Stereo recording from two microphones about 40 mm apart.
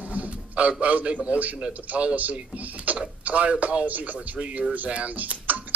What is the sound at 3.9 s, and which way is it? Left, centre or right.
Speech, right.